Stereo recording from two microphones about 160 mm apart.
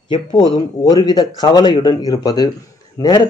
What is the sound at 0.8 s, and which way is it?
Speech, 25° left (ahead or behind).